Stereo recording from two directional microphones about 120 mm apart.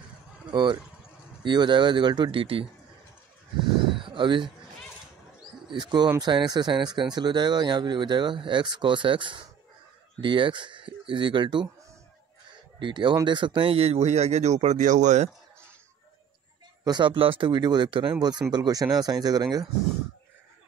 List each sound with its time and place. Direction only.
0.5 s speech: 40° right (ahead or behind)
4.0 s a sound: 45° right (ahead or behind)
5.7 s speech: 40° right (ahead or behind)
12.7 s speech: 40° right (ahead or behind); by 15.2 s 90° right
16.8 s speech: 40° right (ahead or behind)
18.5 s speech: 35° right (ahead or behind)